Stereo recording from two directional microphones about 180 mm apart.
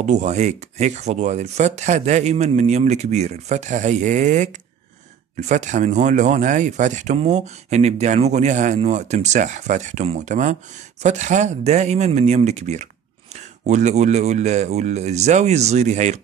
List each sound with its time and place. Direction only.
0.0 s speech: 40° right (ahead or behind)